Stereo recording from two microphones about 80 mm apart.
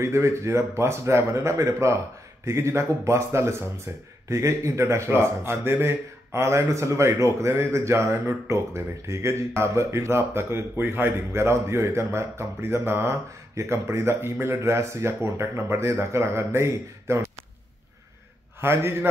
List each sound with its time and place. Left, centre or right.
0.0 s speech: right
18.6 s speech: right